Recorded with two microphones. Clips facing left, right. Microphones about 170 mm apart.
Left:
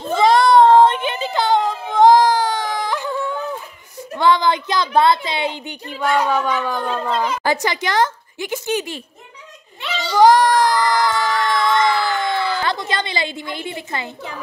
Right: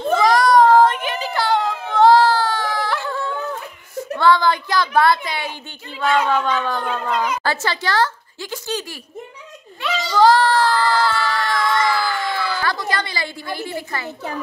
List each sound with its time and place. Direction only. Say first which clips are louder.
0.1 s child singing: left 2 dB; 25° left (ahead or behind)
4.2 s a woman's voice: even; 20° left (ahead or behind)
7.1 s a woman's voice: even; 30° left (ahead or behind)
7.4 s a woman's voice: left 2 dB; 15° left (ahead or behind)
9.8 s a sound: right 2 dB; 25° left (ahead or behind)
10.1 s child singing: left 2 dB; 15° left (ahead or behind)